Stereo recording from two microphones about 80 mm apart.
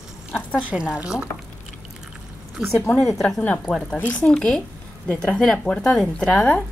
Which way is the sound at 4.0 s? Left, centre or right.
Centre.